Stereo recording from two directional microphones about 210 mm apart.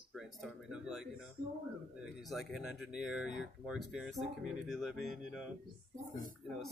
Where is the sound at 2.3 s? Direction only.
Centre (ahead or behind).